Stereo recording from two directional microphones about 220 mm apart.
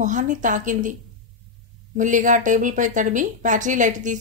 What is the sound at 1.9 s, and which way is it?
Speech, 35° right (ahead or behind).